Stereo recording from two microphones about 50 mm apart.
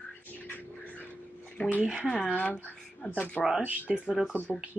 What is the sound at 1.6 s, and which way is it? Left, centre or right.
Speech, left.